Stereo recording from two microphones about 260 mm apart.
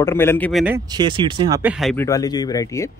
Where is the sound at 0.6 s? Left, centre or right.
Centre.